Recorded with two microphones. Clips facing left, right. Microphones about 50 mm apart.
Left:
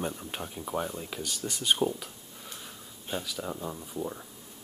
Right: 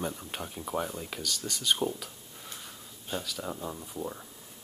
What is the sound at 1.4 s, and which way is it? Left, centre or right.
Speech, centre.